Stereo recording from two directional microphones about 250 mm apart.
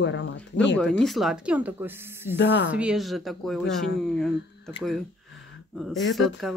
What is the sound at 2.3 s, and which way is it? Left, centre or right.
Speech, left.